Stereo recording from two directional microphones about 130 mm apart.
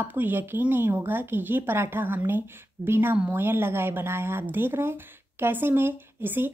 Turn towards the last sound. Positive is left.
turn(degrees=-15)  # may be behind; listen again after turning